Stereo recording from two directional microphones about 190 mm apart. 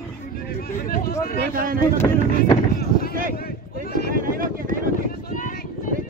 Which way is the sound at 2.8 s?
55° left (ahead or behind).